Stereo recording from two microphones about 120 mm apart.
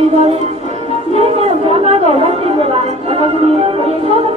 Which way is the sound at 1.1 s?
55° right (ahead or behind).